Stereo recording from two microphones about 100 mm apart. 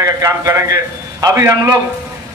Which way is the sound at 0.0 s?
35° right (ahead or behind).